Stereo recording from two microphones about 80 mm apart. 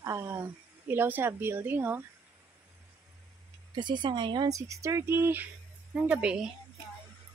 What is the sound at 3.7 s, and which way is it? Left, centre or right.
Speech, right.